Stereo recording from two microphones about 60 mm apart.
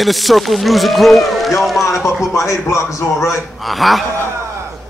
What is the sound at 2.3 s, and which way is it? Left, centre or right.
A man's voice, left.